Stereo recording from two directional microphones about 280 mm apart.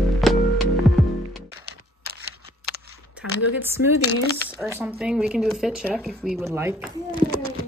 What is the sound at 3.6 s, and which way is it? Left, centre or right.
Speech, centre.